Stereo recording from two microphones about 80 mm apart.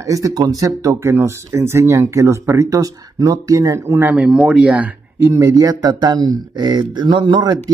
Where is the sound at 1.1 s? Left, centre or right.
Right.